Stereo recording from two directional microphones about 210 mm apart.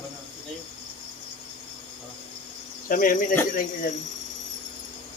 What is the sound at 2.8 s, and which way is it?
Speech, 40° left (ahead or behind).